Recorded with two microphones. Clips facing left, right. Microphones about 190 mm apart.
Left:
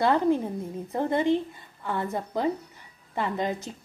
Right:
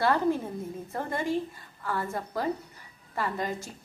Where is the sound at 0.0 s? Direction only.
20° left (ahead or behind).